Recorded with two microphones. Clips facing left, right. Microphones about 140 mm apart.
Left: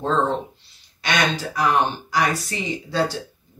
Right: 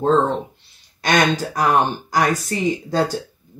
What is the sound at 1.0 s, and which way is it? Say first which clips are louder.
Speech: right 5 dB; 45° right (ahead or behind).